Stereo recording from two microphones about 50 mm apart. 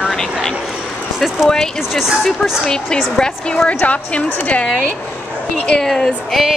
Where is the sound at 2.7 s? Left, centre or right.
Centre.